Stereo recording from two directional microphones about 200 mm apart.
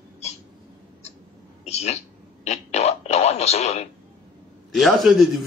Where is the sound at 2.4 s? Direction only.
35° left (ahead or behind).